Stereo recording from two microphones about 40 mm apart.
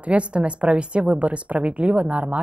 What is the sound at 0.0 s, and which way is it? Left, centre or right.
Speech, right.